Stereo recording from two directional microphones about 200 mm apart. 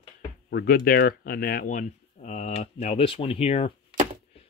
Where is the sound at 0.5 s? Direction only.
50° left (ahead or behind).